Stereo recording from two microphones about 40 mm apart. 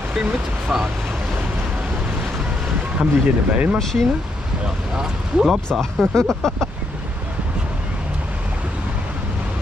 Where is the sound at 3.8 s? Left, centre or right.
Centre.